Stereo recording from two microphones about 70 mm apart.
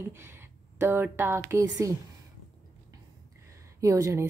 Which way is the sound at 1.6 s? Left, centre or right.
Right.